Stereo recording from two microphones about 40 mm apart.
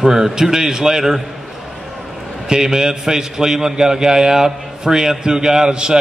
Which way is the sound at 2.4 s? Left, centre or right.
Centre.